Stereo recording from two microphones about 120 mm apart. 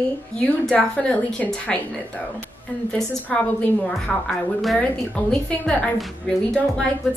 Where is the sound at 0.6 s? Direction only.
10° left (ahead or behind).